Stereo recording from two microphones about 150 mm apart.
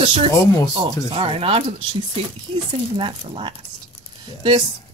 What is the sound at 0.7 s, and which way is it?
Speech, 35° right (ahead or behind).